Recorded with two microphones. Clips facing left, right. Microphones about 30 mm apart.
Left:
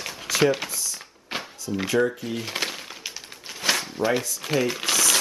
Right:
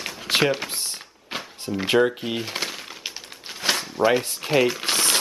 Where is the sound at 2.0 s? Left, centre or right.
Right.